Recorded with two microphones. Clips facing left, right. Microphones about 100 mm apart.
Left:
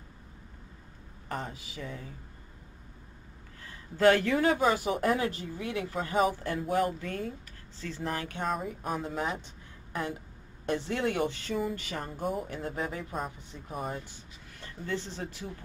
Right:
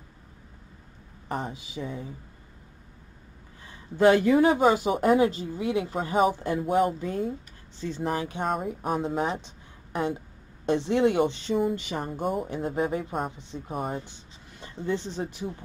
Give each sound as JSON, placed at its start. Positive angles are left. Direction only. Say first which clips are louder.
{"t": 1.3, "sound": "speech", "louder": "right 5 dB", "side_deg": -20}
{"t": 3.6, "sound": "speech", "louder": "right 3 dB", "side_deg": -20}
{"t": 6.6, "sound": "speech", "louder": "right 5 dB", "side_deg": -10}
{"t": 12.1, "sound": "speech", "louder": "right 4 dB", "side_deg": -5}
{"t": 12.6, "sound": "speech", "louder": "right 7 dB", "side_deg": -20}